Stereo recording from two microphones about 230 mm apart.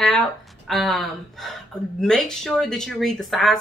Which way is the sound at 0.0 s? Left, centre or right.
Centre.